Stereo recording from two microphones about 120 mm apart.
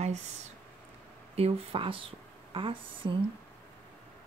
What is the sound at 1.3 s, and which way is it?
Speech, 55° right (ahead or behind).